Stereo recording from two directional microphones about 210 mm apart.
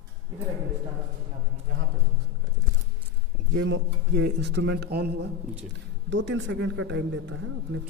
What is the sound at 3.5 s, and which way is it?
A man's voice, 65° right (ahead or behind).